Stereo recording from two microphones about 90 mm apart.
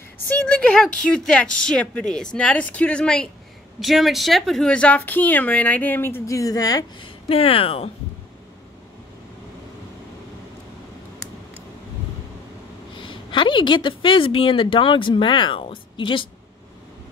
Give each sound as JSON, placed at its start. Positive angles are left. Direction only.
{"t": 0.3, "sound": "a woman's voice", "side_deg": 10}
{"t": 3.8, "sound": "speech", "side_deg": 0}
{"t": 7.0, "sound": "speech", "side_deg": 90}
{"t": 12.9, "sound": "a woman's voice", "side_deg": 65}